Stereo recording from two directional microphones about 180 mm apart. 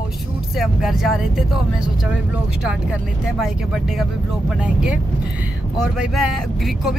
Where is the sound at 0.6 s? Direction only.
Centre (ahead or behind).